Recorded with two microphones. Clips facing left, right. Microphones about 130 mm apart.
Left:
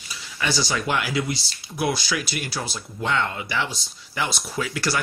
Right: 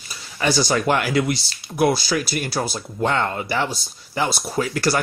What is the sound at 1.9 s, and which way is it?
Speech, 40° right (ahead or behind).